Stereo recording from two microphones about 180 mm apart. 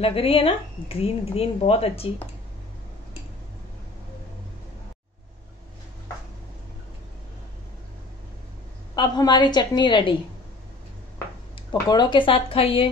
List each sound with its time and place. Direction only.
0.0 s speech: 30° left (ahead or behind)
8.9 s a woman's voice: 25° left (ahead or behind)
11.7 s a woman's voice: 25° left (ahead or behind)